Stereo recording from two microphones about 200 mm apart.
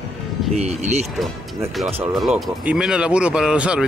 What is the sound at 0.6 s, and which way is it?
Speech, 35° right (ahead or behind).